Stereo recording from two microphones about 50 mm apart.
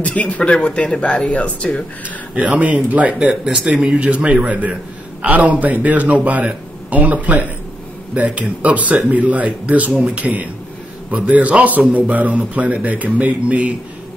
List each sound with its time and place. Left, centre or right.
0.0 s speech: left
2.3 s speech: right
3.4 s speech: centre
3.7 s speech: right